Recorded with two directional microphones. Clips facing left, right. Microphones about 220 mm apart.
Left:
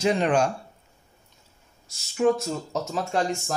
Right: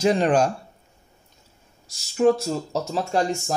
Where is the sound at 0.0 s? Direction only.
35° right (ahead or behind).